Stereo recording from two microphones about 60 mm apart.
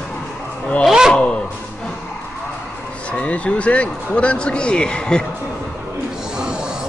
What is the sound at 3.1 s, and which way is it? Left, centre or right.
Speech, centre.